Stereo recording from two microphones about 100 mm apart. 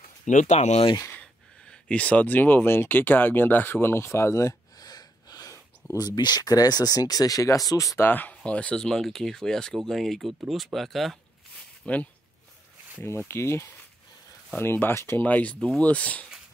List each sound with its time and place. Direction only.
0.6 s speech: 85° left
1.0 s a sound: 20° left (ahead or behind)
1.7 s speech: 10° left (ahead or behind); by 8.0 s 35° left (ahead or behind)
8.0 s speech: 15° left (ahead or behind); by 11.1 s centre (ahead or behind)
11.8 s speech: 15° left (ahead or behind)
13.3 s speech: 25° left (ahead or behind)